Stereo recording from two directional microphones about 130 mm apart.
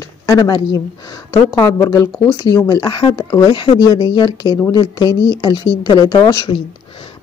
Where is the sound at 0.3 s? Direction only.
30° left (ahead or behind).